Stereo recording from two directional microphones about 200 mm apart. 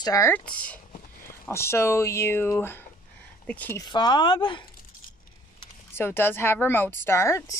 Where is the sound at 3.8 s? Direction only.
20° left (ahead or behind).